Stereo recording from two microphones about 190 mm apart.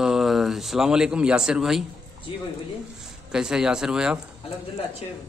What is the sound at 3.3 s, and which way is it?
Speech, 5° right (ahead or behind).